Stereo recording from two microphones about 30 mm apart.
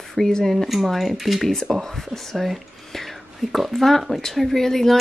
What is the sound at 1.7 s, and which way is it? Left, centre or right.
Speech, centre.